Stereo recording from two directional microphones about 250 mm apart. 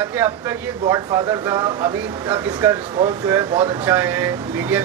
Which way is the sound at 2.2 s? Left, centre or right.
Centre.